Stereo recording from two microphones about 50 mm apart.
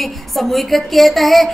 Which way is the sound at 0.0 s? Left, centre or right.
Centre.